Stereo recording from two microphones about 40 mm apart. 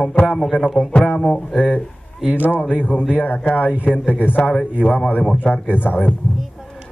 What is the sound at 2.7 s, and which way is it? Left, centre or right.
A man's voice, left.